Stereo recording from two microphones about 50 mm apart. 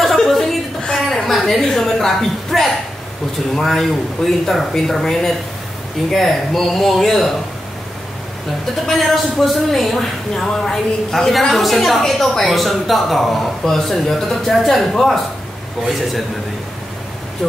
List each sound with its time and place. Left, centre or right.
0.0 s a sound: centre
3.5 s speech: centre
8.8 s speech: centre